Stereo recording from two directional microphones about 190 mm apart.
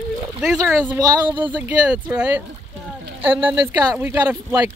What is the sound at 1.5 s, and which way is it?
Speech, 5° right (ahead or behind).